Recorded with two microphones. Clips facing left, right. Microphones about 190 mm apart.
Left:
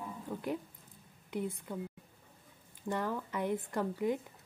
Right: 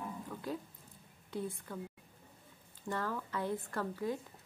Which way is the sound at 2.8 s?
15° left (ahead or behind).